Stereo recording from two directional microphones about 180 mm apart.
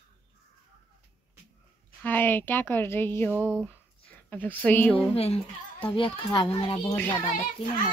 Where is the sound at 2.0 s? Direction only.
10° left (ahead or behind).